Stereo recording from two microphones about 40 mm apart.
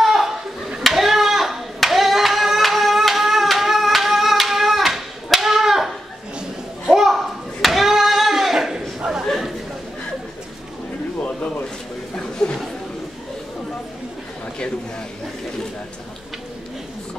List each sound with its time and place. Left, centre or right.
0.0 s a sound: centre
0.8 s clapping: centre
6.9 s hands: centre
9.2 s chatter: centre
11.2 s a sound: left
12.2 s chatter: centre